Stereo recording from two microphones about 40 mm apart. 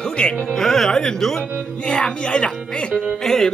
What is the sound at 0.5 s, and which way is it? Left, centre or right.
Speech, centre.